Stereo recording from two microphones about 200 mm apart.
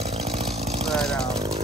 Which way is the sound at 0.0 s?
30° right (ahead or behind).